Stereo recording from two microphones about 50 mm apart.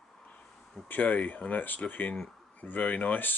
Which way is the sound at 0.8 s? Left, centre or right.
Left.